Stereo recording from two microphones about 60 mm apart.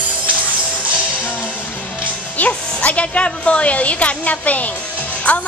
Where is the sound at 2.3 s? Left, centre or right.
Left.